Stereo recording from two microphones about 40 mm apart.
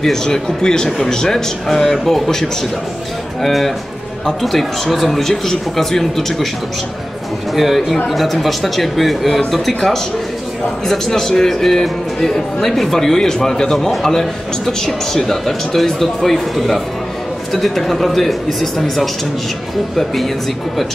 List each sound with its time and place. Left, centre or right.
0.0 s speech: centre
7.5 s speech: centre